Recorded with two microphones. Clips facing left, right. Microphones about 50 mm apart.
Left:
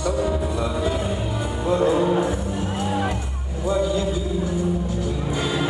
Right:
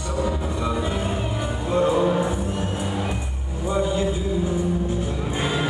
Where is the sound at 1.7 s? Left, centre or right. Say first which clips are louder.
Even; right.